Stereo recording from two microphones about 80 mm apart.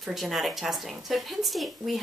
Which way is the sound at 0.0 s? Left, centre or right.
Centre.